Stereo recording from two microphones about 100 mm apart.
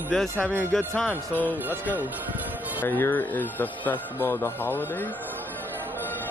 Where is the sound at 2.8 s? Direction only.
20° left (ahead or behind).